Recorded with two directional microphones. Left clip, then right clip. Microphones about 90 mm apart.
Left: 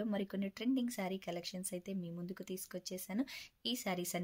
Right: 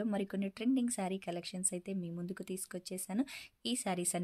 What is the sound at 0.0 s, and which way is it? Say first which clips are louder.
Speech: right 2 dB; 40° right (ahead or behind).